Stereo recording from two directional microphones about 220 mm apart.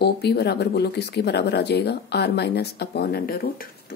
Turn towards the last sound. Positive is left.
turn(degrees=45)  # may be behind; listen again after turning